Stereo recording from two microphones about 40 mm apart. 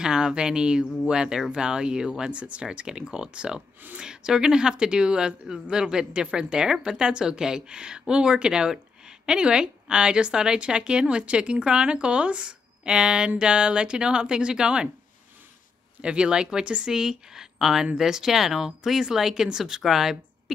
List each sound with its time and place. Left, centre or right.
0.0 s speech: right
2.3 s speech: right
16.0 s speech: right; by 20.5 s centre